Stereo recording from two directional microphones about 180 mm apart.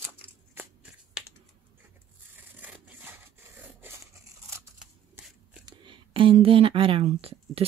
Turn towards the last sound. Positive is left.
turn(degrees=-30)  # may be behind; listen again after turning